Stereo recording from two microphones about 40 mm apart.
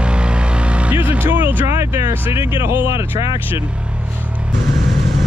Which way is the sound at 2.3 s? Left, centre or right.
Right.